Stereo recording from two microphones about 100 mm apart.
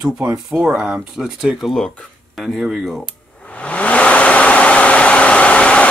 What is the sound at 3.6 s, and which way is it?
Vehicle, 15° left (ahead or behind).